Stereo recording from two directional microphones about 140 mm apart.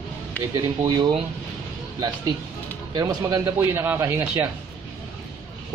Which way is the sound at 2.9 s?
25° right (ahead or behind).